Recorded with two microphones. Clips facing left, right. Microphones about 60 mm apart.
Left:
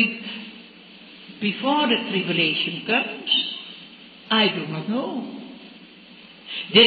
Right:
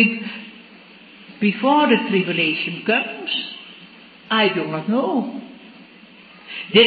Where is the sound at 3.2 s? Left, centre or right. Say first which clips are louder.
Left 2 dB; right.